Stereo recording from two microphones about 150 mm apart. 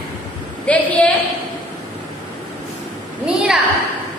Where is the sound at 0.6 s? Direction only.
10° left (ahead or behind).